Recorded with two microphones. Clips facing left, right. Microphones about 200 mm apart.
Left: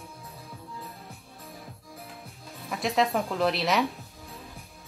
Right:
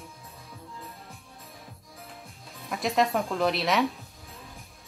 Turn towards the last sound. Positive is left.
turn(degrees=0)  # may be behind; listen again after turning